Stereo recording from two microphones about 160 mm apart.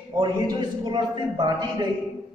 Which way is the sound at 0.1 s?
30° right (ahead or behind).